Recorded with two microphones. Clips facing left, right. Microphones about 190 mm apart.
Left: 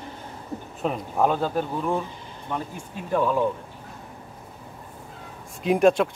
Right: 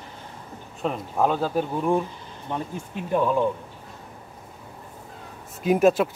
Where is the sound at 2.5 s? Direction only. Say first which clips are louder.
Even; 25° right (ahead or behind).